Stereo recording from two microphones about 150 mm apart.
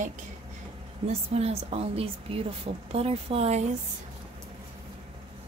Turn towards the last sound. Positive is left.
turn(degrees=-45)  # may be behind; listen again after turning